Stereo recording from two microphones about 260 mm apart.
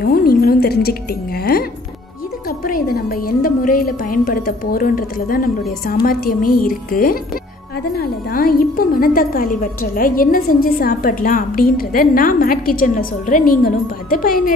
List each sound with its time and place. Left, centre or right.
0.0 s a woman's voice: left